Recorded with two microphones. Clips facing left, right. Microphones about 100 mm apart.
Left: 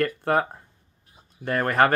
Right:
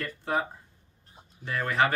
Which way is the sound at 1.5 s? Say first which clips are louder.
Left 6 dB; 55° left (ahead or behind).